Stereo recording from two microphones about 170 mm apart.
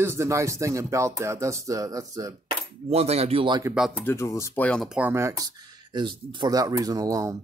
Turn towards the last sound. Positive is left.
turn(degrees=-20)  # may be behind; listen again after turning